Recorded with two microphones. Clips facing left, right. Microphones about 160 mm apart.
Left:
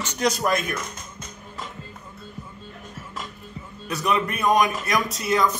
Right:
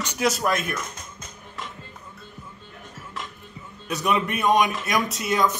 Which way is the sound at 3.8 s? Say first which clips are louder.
Even; centre (ahead or behind).